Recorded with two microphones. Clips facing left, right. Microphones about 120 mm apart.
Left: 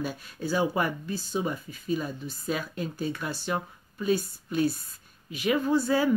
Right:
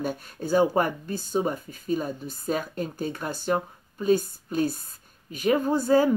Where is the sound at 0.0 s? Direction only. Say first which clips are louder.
Right 2 dB; 50° right (ahead or behind).